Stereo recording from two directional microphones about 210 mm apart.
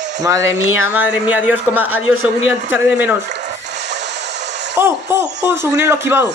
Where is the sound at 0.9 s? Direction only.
5° right (ahead or behind).